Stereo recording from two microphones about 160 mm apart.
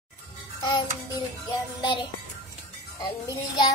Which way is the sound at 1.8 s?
30° left (ahead or behind).